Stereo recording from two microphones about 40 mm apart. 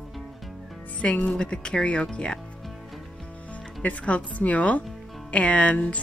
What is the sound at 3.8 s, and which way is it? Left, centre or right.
Speech, left.